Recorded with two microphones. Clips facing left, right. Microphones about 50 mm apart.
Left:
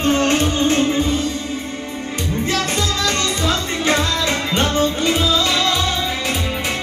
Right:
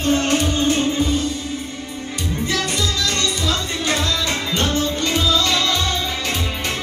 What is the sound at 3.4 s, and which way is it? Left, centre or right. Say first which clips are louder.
Music: left 3 dB; left.